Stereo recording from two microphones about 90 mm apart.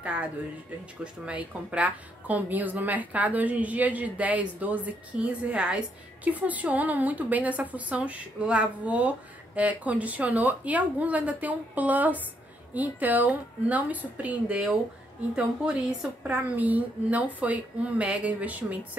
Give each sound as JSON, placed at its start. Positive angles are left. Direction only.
{"t": 0.0, "sound": "a woman's voice", "side_deg": -15}